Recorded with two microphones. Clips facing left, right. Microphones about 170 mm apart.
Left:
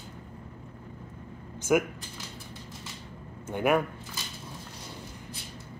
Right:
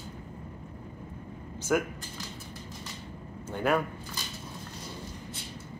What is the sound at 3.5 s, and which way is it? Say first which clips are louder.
Keys jangling: left 2 dB; 15° left (ahead or behind).